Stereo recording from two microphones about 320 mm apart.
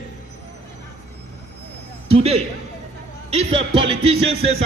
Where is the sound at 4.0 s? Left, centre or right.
Centre.